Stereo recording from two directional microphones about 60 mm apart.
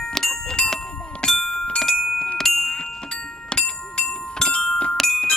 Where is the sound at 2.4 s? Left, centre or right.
Centre.